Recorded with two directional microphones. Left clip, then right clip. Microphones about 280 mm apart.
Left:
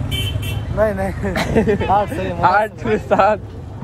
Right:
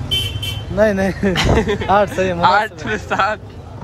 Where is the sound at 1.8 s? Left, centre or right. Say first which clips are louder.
Right 3 dB; right.